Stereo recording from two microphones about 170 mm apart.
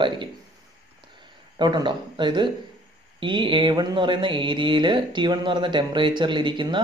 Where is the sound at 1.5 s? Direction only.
25° right (ahead or behind).